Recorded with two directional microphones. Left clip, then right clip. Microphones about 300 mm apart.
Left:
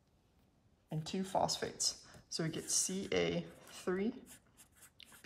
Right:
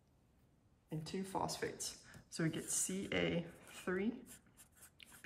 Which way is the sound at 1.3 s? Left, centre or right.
Left.